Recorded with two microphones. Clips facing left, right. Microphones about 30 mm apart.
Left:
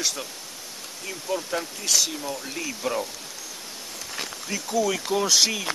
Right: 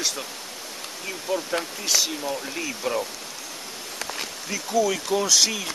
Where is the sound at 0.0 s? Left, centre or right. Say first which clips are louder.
Even; centre.